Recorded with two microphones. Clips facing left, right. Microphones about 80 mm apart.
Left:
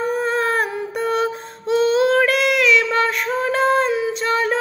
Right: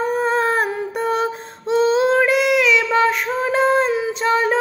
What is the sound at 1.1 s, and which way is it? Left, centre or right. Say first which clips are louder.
Female singing: even; right.